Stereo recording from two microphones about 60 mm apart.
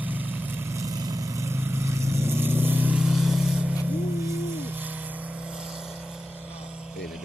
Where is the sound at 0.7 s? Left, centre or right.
Right.